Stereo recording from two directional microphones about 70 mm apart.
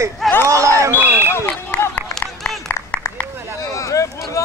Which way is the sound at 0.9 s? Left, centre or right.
Right.